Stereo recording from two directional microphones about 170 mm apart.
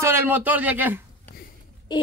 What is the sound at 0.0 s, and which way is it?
Speech, 15° right (ahead or behind).